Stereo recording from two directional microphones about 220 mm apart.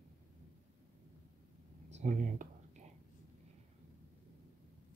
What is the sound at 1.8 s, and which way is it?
Speech, 30° right (ahead or behind).